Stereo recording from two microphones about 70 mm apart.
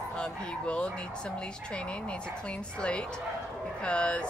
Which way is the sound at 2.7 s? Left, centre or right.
Centre.